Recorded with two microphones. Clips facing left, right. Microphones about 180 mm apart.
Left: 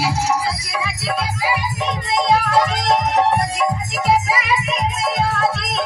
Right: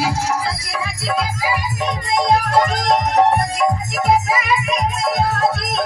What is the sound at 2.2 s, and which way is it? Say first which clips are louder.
Music: right 1 dB; 45° right (ahead or behind).